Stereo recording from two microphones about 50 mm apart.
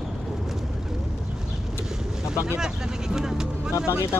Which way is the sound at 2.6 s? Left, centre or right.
Centre.